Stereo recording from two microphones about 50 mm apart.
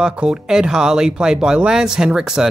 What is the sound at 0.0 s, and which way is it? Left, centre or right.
Speech, centre.